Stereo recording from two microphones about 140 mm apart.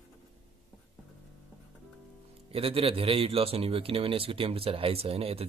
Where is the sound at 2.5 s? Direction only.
40° right (ahead or behind).